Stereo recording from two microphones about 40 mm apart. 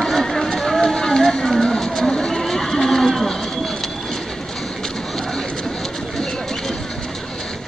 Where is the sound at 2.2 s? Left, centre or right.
Centre.